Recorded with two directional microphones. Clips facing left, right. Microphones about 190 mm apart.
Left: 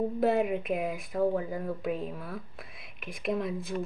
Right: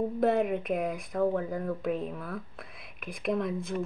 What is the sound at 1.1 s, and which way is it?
Speech, 25° left (ahead or behind).